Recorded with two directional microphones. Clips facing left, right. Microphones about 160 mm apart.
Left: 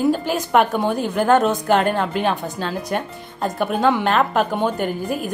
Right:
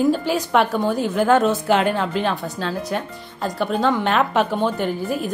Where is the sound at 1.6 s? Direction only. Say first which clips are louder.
Left 1 dB; 50° left (ahead or behind).